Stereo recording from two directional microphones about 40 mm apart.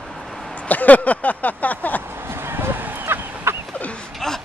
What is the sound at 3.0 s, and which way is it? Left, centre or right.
Fowl, right.